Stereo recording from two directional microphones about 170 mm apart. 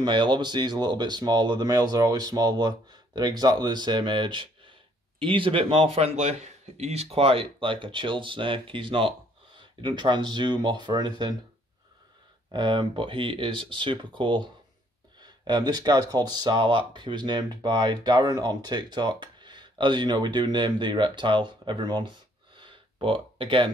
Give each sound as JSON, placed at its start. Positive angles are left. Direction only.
{"t": 0.0, "sound": "speech", "side_deg": -25}
{"t": 12.4, "sound": "speech", "side_deg": -25}
{"t": 22.6, "sound": "a sound", "side_deg": -30}
{"t": 23.3, "sound": "speech", "side_deg": -30}